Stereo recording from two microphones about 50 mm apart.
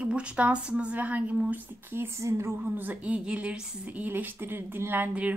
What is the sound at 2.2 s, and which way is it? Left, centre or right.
Speech, right.